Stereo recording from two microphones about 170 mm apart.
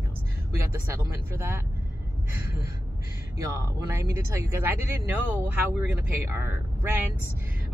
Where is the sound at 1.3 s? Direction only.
15° right (ahead or behind).